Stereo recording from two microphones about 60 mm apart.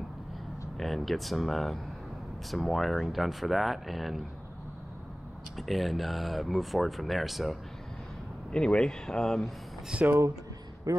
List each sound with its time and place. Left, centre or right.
0.7 s speech: centre
5.6 s speech: centre
8.5 s speech: centre
9.9 s speech: centre
10.9 s a man's voice: right